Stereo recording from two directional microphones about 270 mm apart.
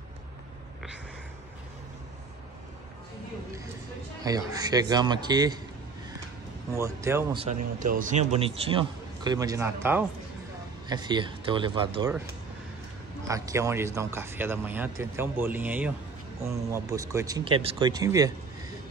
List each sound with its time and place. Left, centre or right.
4.2 s speech: centre
6.8 s speech: centre
7.3 s a man's voice: right
13.3 s speech: centre